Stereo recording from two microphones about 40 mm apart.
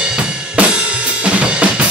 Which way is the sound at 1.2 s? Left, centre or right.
Right.